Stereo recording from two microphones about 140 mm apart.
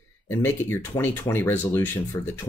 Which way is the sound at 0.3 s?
15° left (ahead or behind).